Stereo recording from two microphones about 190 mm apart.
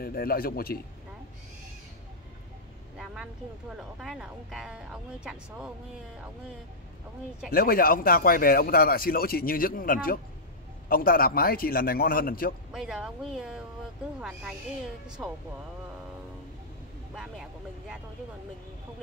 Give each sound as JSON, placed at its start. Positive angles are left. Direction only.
{"t": 0.0, "sound": "speech", "side_deg": 50}
{"t": 3.7, "sound": "speech", "side_deg": 0}
{"t": 7.5, "sound": "speech", "side_deg": 50}
{"t": 12.7, "sound": "speech", "side_deg": -5}
{"t": 15.0, "sound": "speech", "side_deg": -5}
{"t": 17.1, "sound": "speech", "side_deg": -5}